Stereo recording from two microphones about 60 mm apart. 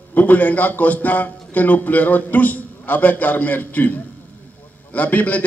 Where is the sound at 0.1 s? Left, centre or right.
Left.